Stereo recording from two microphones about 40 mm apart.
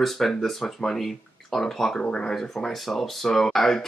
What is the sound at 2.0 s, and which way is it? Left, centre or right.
Speech, centre.